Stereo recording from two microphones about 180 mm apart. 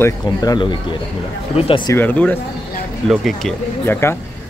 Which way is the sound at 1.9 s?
10° left (ahead or behind).